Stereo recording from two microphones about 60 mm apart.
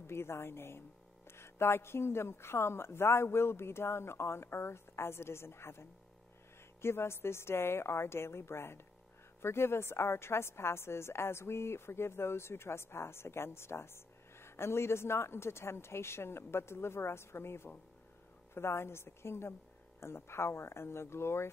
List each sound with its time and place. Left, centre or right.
0.0 s a woman's voice: left